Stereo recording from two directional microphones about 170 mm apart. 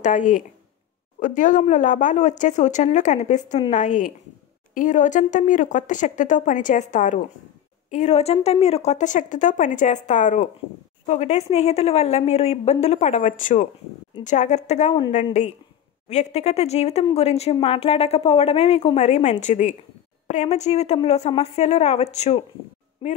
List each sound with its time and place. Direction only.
0.0 s a woman's voice: 50° left (ahead or behind); by 23.1 s 30° left (ahead or behind)